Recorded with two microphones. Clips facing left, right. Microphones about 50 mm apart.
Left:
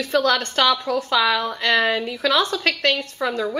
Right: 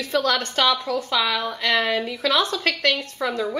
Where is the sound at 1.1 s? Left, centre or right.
Centre.